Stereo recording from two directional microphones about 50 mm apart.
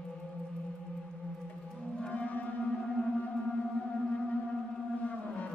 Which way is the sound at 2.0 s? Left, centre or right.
Left.